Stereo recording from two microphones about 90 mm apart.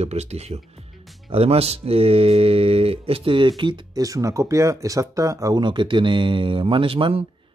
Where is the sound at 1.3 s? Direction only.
90° right; by 3.8 s 65° right (ahead or behind).